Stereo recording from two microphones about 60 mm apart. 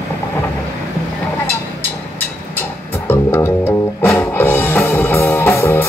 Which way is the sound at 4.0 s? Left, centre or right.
Left.